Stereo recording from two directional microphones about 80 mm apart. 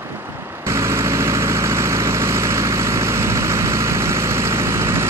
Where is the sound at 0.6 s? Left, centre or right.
Right.